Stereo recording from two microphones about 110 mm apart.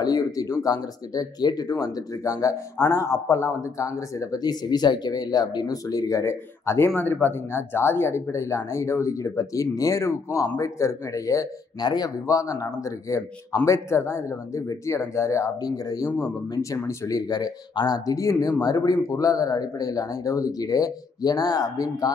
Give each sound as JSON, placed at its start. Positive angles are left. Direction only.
{"t": 0.0, "sound": "speech", "side_deg": 35}